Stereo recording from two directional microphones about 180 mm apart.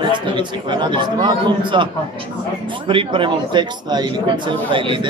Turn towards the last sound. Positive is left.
turn(degrees=-25)  # may be behind; listen again after turning